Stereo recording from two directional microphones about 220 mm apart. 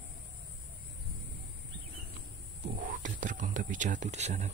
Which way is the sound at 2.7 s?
35° right (ahead or behind).